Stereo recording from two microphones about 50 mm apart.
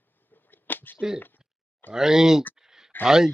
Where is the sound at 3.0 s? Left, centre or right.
Centre.